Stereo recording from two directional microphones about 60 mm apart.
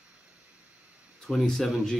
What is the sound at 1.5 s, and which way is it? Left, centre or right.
Speech, centre.